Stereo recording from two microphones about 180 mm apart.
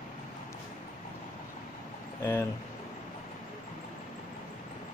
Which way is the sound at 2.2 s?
15° left (ahead or behind).